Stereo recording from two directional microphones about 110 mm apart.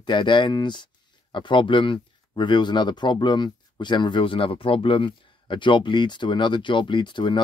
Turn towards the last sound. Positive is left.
turn(degrees=45)  # may be behind; listen again after turning